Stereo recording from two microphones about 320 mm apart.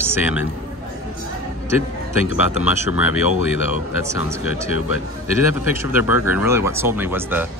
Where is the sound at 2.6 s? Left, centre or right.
Centre.